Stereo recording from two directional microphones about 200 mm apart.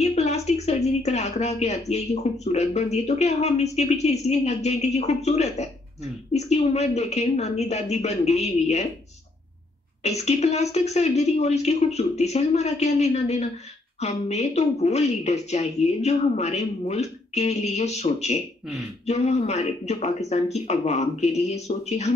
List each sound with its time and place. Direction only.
0.0 s a sound: 35° left (ahead or behind)
1.9 s speech: 35° left (ahead or behind)
10.0 s speech: 35° left (ahead or behind)